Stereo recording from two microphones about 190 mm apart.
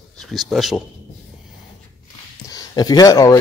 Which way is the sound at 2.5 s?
20° left (ahead or behind).